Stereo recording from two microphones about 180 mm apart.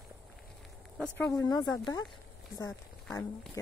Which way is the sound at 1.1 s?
20° left (ahead or behind).